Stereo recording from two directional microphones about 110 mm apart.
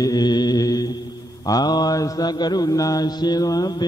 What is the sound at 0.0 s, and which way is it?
Mantra, 35° left (ahead or behind).